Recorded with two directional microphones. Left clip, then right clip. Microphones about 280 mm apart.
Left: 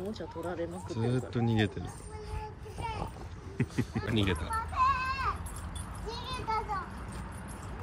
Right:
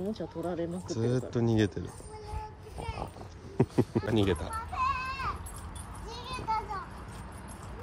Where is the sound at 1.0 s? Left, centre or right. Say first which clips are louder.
Right 3 dB; centre.